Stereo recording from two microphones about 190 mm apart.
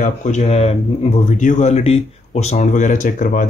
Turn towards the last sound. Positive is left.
turn(degrees=45)  # may be behind; listen again after turning